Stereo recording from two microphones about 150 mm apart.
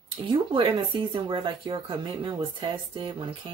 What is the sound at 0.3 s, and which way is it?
Speech, 35° right (ahead or behind).